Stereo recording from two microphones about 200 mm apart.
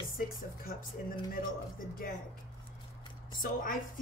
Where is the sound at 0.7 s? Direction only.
40° left (ahead or behind).